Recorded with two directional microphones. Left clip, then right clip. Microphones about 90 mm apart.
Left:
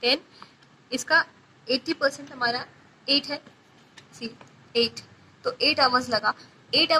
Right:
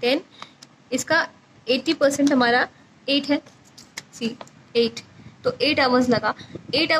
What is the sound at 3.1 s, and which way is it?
A woman's voice, 50° right (ahead or behind).